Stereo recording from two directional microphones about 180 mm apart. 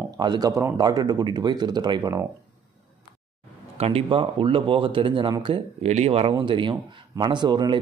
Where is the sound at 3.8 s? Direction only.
30° right (ahead or behind).